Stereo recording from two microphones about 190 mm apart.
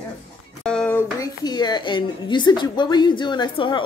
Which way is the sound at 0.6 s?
5° left (ahead or behind).